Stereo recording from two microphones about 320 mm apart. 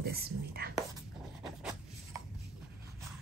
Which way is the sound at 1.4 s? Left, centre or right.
Centre.